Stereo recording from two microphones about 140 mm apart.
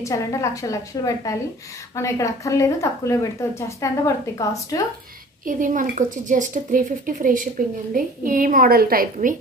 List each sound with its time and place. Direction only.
0.0 s a woman's voice: 20° left (ahead or behind)
5.4 s a woman's voice: 70° right (ahead or behind)